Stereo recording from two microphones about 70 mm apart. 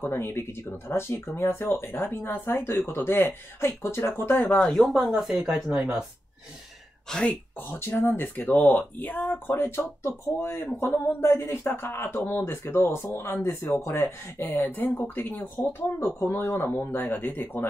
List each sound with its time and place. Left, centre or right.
0.0 s speech: left
4.4 s speech: centre
4.7 s speech: centre
5.5 s speech: right
7.1 s speech: centre
7.5 s speech: left